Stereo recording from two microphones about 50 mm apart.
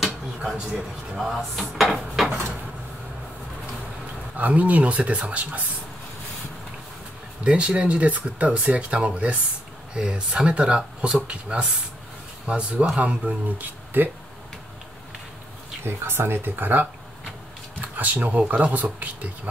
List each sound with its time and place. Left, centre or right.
1.1 s speech: centre
1.8 s dishes: centre
4.4 s speech: right
7.4 s speech: right
13.6 s speech: right
15.8 s speech: right